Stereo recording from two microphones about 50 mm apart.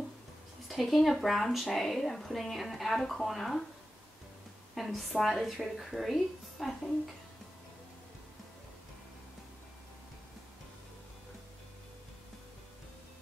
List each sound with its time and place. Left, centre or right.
0.7 s a woman's voice: centre
4.7 s a woman's voice: centre